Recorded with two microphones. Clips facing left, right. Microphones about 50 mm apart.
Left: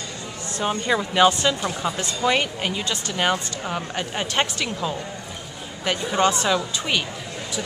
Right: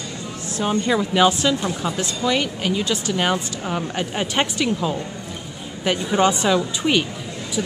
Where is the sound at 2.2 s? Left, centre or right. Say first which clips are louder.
Even; centre.